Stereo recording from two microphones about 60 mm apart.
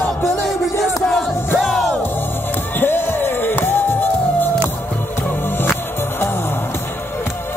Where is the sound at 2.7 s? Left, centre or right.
Left.